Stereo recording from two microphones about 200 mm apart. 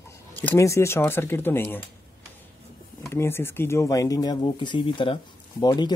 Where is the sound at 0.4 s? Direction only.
10° left (ahead or behind).